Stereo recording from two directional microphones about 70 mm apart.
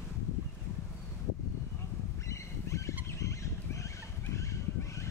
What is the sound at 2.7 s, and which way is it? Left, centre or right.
Fowl, left.